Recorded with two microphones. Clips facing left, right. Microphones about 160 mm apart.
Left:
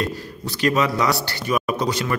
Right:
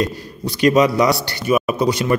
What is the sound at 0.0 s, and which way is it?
A man's voice, 15° right (ahead or behind).